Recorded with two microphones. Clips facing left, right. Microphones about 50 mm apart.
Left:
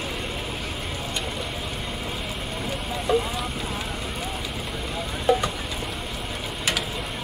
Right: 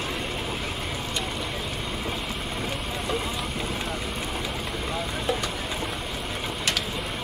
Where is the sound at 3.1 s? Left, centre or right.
Centre.